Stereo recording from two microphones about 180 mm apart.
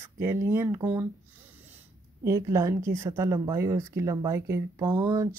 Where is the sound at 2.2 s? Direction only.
15° right (ahead or behind).